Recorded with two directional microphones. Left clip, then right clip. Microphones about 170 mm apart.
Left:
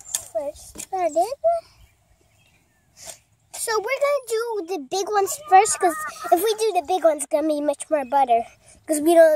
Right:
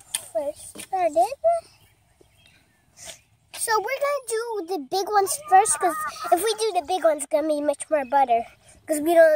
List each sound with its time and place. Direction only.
0.1 s a child's voice: 40° left (ahead or behind)
3.0 s a sound: 55° left (ahead or behind)
4.6 s a child's voice: 40° left (ahead or behind)